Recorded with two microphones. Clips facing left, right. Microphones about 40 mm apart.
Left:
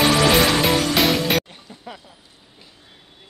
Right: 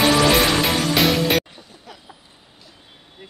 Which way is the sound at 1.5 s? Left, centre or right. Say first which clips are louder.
Left 4 dB; left.